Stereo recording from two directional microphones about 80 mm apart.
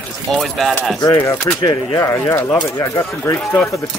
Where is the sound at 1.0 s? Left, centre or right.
Left.